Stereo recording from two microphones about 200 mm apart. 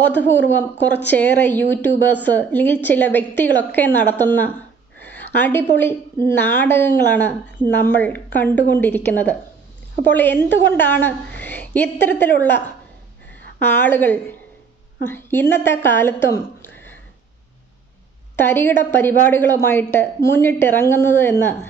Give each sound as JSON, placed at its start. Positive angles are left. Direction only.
{"t": 0.1, "sound": "a woman's voice", "side_deg": 10}
{"t": 18.3, "sound": "a woman's voice", "side_deg": 10}